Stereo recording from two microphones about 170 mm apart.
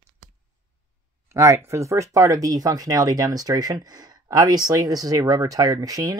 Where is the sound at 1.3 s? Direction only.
20° right (ahead or behind).